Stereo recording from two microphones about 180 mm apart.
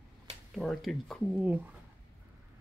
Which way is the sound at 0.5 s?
Centre (ahead or behind).